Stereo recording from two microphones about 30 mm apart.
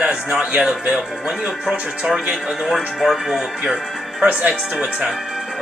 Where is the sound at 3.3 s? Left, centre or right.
Centre.